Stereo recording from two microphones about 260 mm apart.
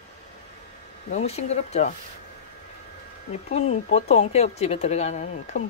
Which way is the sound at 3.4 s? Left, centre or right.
Left.